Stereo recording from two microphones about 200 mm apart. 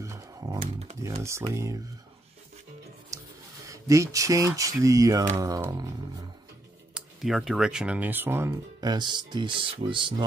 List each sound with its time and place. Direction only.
0.0 s a sound: 15° right (ahead or behind)
0.6 s typing: 30° right (ahead or behind)
1.0 s speech: 15° right (ahead or behind)
3.1 s a sound: 15° right (ahead or behind)
3.6 s speech: 15° right (ahead or behind)
7.2 s speech: centre (ahead or behind); by 10.2 s 25° right (ahead or behind)